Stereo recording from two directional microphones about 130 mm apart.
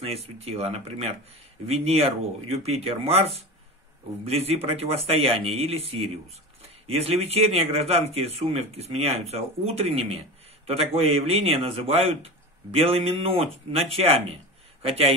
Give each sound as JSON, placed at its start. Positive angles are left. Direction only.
{"t": 0.0, "sound": "a man's voice", "side_deg": -50}